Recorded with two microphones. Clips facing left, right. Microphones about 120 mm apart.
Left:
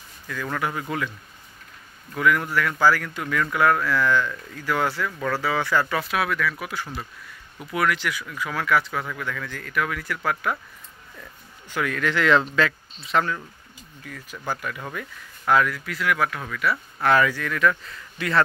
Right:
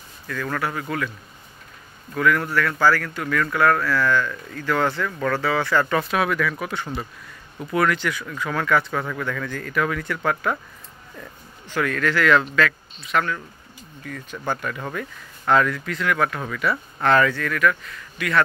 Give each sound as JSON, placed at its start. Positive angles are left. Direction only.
{"t": 0.3, "sound": "speech", "side_deg": 10}
{"t": 2.1, "sound": "speech", "side_deg": 15}
{"t": 11.7, "sound": "speech", "side_deg": 15}
{"t": 14.0, "sound": "speech", "side_deg": 5}